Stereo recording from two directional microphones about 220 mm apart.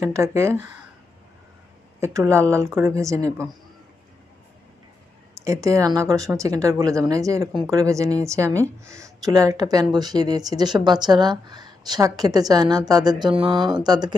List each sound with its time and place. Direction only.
0.0 s speech: 15° right (ahead or behind)
2.0 s speech: 15° right (ahead or behind)
5.3 s speech: 15° right (ahead or behind)